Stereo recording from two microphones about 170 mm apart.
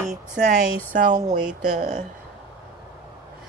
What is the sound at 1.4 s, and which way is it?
Speech, 5° right (ahead or behind).